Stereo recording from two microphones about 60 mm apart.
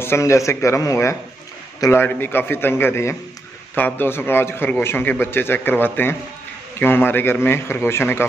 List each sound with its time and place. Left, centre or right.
0.2 s a man's voice: left
1.8 s a man's voice: left
2.1 s a man's voice: left
3.7 s a man's voice: left